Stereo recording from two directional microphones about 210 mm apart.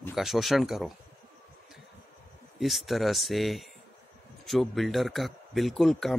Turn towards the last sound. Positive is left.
turn(degrees=0)  # may be behind; listen again after turning